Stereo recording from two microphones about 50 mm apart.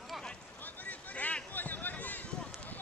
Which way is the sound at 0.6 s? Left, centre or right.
Left.